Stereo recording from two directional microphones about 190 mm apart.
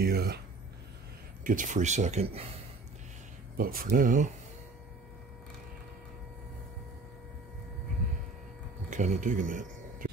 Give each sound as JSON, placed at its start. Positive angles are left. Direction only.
{"t": 0.0, "sound": "speech", "side_deg": -55}
{"t": 1.4, "sound": "speech", "side_deg": -45}
{"t": 3.5, "sound": "speech", "side_deg": -50}
{"t": 8.9, "sound": "speech", "side_deg": -40}